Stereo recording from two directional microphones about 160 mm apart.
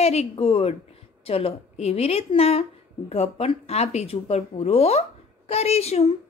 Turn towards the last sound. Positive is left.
turn(degrees=40)  # may be behind; listen again after turning